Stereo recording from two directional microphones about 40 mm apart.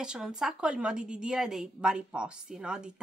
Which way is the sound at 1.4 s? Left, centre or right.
Centre.